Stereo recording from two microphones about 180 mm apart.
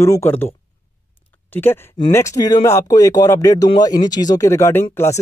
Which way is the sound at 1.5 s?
10° left (ahead or behind).